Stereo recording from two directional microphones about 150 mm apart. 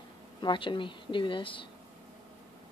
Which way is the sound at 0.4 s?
30° left (ahead or behind).